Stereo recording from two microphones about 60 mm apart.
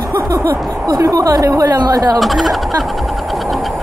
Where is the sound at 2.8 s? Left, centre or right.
Centre.